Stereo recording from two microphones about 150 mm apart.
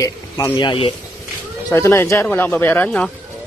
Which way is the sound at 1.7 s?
20° left (ahead or behind).